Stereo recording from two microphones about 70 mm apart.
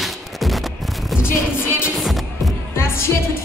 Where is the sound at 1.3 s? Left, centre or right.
Left.